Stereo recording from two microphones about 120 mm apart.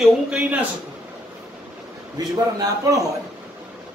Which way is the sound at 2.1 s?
30° right (ahead or behind).